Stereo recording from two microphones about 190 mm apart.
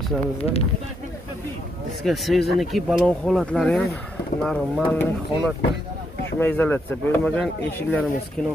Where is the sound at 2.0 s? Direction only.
Centre (ahead or behind).